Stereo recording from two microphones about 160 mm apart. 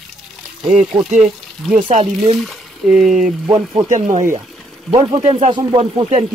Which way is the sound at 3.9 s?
50° right (ahead or behind).